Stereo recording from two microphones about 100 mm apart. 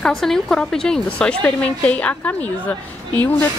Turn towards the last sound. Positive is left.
turn(degrees=15)  # may be behind; listen again after turning